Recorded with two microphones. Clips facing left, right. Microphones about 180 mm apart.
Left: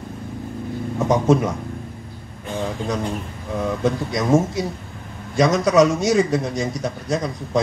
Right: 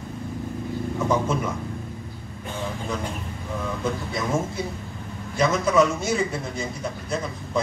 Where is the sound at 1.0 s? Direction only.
90° left.